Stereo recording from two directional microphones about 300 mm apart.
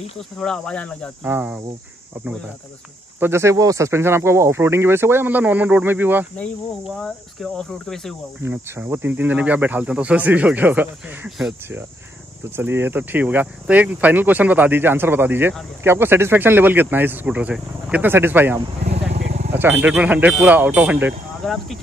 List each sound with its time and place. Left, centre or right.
0.4 s speech: centre
3.2 s speech: centre
18.9 s vehicle: right
19.5 s speech: centre